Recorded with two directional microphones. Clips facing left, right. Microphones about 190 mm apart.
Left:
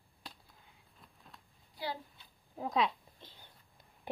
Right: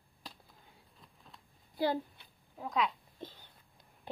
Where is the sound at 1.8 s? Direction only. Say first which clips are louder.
Right 9 dB; 50° right (ahead or behind).